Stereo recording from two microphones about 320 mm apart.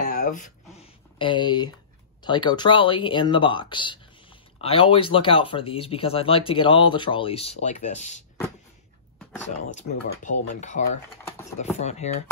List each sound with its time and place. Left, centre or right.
0.0 s a sound: left
2.2 s speech: centre
10.5 s speech: left
11.2 s speech: centre
11.8 s speech: left